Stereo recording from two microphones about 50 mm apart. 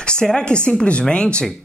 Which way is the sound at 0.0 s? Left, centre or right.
Centre.